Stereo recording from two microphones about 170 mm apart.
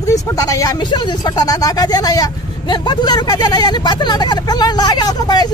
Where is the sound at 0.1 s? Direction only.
20° left (ahead or behind).